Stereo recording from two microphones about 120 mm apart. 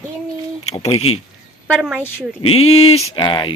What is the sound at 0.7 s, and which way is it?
Speech, 50° left (ahead or behind).